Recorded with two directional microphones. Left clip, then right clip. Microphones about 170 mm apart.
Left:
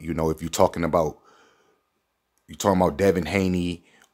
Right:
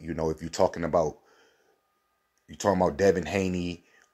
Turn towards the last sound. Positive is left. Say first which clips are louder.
# left 5 dB
turn(degrees=20)  # may be behind; listen again after turning